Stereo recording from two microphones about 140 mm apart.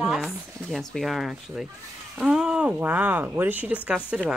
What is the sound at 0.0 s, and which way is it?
Speech, 5° right (ahead or behind).